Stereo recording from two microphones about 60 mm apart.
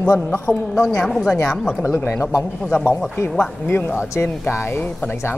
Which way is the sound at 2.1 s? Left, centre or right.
Left.